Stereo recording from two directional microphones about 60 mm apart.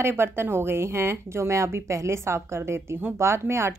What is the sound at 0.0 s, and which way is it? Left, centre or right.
A woman's voice, right.